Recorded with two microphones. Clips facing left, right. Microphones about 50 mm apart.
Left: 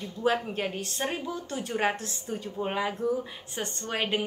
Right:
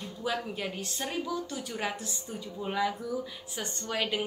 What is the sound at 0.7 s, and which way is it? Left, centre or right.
A woman's voice, left.